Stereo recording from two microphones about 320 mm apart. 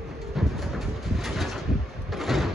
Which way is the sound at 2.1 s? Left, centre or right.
Centre.